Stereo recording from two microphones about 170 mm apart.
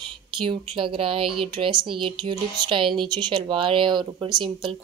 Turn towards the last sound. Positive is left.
turn(degrees=-25)  # may be behind; listen again after turning